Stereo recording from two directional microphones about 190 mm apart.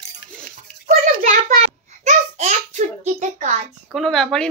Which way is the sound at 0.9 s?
40° right (ahead or behind).